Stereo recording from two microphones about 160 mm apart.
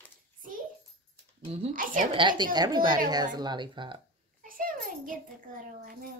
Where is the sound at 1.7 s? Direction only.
60° right (ahead or behind).